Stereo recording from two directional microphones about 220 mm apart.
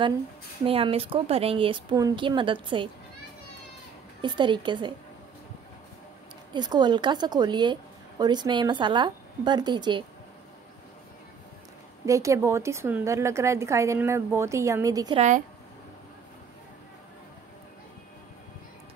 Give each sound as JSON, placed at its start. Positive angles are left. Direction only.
{"t": 0.7, "sound": "a woman's voice", "side_deg": -25}
{"t": 4.2, "sound": "a woman's voice", "side_deg": -20}
{"t": 6.5, "sound": "a woman's voice", "side_deg": -20}
{"t": 12.1, "sound": "a woman's voice", "side_deg": -15}
{"t": 15.1, "sound": "a woman's voice", "side_deg": -35}